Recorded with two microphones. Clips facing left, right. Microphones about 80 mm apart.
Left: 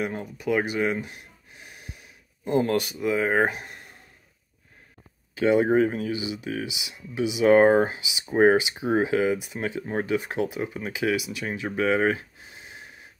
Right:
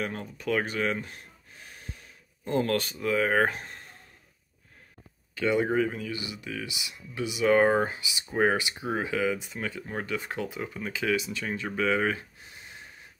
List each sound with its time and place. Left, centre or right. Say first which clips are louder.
0.0 s speech: left 4 dB; centre
5.3 s speech: left 5 dB; left
7.4 s speech: left 5 dB; left
9.8 s speech: left 7 dB; left
10.0 s speech: left 6 dB; left
11.7 s a sound: left 4 dB; left